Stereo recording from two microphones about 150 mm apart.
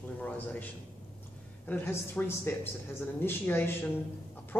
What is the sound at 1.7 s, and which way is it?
Speech, 15° left (ahead or behind).